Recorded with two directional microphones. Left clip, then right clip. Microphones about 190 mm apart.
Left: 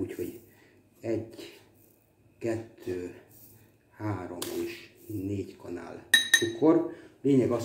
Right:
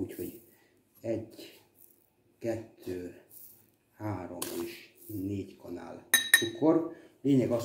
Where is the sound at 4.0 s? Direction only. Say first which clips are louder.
Left 3 dB; 20° right (ahead or behind).